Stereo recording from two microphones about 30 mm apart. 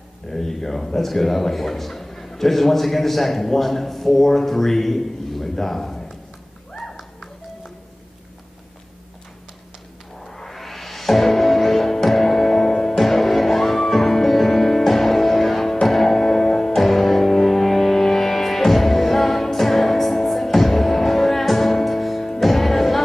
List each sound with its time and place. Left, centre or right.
0.3 s a man's voice: centre
6.8 s music: centre
10.2 s music: centre